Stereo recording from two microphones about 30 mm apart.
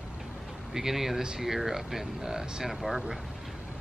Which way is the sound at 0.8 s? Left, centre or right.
Centre.